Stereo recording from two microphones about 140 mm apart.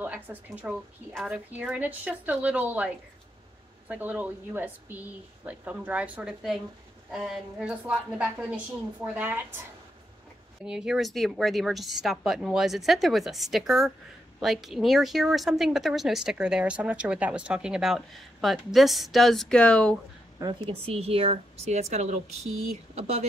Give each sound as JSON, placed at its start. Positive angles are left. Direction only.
{"t": 0.0, "sound": "a sound", "side_deg": -10}
{"t": 0.7, "sound": "speech", "side_deg": -5}
{"t": 3.9, "sound": "speech", "side_deg": -10}
{"t": 10.6, "sound": "speech", "side_deg": -5}
{"t": 20.3, "sound": "a woman's voice", "side_deg": -30}
{"t": 20.8, "sound": "speech", "side_deg": -45}